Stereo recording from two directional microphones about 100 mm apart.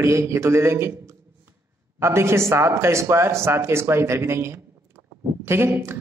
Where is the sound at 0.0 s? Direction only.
30° right (ahead or behind).